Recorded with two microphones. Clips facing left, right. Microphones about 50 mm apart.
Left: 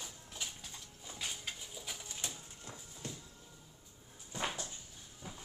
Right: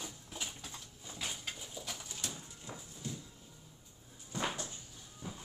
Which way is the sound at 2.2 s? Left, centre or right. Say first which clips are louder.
Right 1 dB; left.